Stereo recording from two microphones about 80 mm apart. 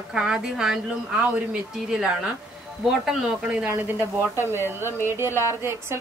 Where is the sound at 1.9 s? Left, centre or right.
Centre.